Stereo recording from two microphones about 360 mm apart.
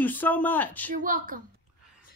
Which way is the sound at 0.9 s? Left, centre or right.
Right.